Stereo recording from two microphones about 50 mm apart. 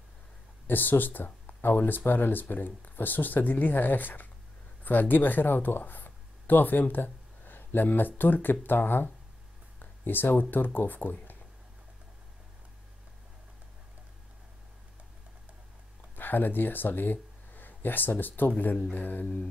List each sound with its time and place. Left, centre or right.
0.7 s speech: left
16.2 s speech: left
19.2 s mantra: left